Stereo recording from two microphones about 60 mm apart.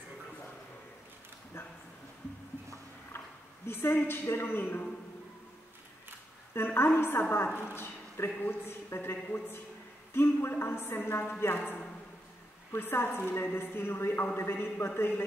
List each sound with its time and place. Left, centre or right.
3.6 s a woman's voice: left
6.5 s a sound: left
7.0 s a woman's voice: left
12.7 s a woman's voice: left